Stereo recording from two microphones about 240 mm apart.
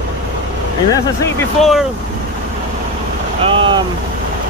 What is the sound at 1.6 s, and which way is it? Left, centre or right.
Speech, centre.